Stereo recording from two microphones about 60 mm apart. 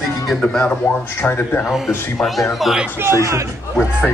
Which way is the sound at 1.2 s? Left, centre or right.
Left.